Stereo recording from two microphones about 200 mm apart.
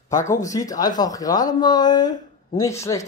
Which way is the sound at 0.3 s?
15° left (ahead or behind).